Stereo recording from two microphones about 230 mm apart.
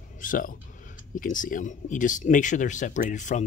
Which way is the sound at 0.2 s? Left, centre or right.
Left.